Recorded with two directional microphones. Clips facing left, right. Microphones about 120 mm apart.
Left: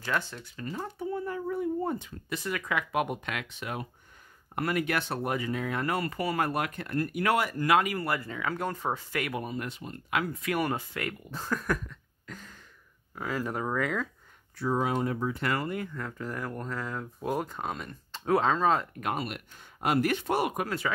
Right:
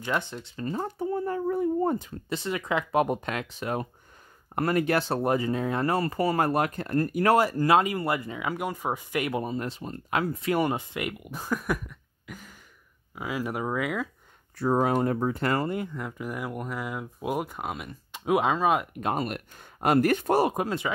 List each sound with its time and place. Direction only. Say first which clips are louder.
0.0 s speech: right 2 dB; 20° right (ahead or behind); by 2.3 s 40° right (ahead or behind)
2.3 s speech: right 3 dB; 25° right (ahead or behind); by 14.0 s 5° right (ahead or behind)
14.6 s speech: right 4 dB; 50° right (ahead or behind); by 18.9 s 15° right (ahead or behind)
19.1 s speech: right 4 dB; 45° right (ahead or behind)
20.4 s speech: right 3 dB; 25° right (ahead or behind)